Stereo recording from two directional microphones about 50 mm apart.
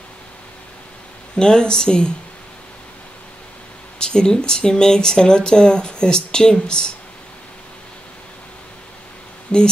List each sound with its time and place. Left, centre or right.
1.3 s speech: centre
4.0 s speech: centre
9.5 s speech: centre